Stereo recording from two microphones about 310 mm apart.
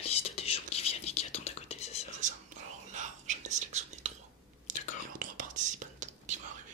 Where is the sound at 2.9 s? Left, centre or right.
Right.